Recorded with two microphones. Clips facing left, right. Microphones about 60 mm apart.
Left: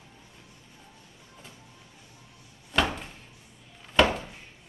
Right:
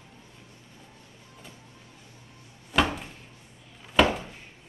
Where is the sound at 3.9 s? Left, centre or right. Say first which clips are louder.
Even; centre.